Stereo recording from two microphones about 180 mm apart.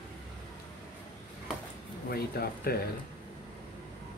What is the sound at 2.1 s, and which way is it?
Speech, 60° left (ahead or behind).